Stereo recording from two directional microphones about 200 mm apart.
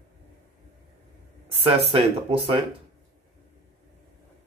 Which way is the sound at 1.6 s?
25° right (ahead or behind).